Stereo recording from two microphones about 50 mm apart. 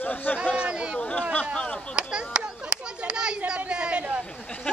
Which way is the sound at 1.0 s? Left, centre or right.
Left.